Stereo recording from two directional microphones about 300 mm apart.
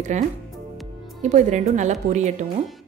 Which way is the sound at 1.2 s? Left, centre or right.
Right.